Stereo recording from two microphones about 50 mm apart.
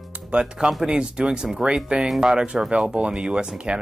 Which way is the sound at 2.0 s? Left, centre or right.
Centre.